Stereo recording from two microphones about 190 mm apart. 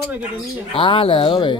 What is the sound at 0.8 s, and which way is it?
Speech, 30° left (ahead or behind).